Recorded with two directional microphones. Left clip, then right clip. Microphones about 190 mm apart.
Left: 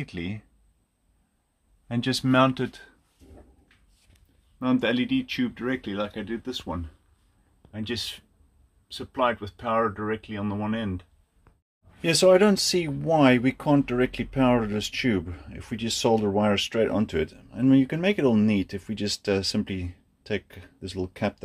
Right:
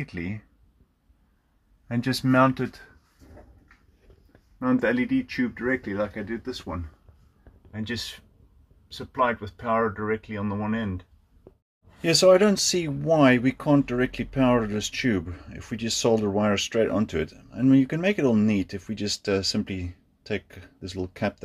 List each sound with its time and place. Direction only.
0.0 s speech: centre (ahead or behind)
1.9 s speech: centre (ahead or behind)
4.6 s speech: 10° left (ahead or behind)
9.0 s speech: 5° right (ahead or behind)
12.0 s speech: 10° left (ahead or behind)